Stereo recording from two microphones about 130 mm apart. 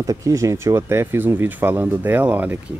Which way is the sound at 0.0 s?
25° right (ahead or behind).